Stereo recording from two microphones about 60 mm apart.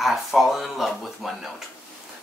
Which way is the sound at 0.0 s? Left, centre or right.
Centre.